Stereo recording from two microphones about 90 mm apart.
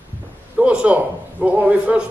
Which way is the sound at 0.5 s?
15° right (ahead or behind).